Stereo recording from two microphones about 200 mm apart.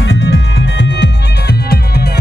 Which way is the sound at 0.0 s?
60° left (ahead or behind).